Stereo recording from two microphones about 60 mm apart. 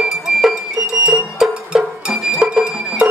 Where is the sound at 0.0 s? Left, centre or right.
Centre.